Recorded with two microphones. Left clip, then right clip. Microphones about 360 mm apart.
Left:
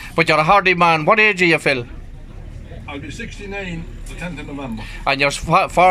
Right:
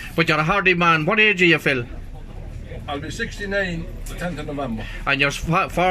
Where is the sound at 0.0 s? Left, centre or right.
Centre.